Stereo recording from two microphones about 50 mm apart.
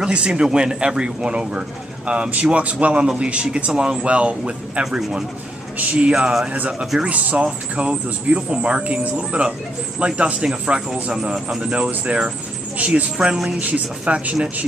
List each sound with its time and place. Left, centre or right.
0.0 s speech: centre
6.1 s speech: centre
7.0 s a woman's voice: right
13.0 s speech: centre
13.6 s speech: right